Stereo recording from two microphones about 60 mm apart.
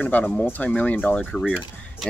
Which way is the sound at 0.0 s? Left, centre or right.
Left.